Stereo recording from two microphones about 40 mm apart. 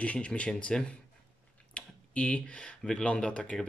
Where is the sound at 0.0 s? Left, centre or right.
Left.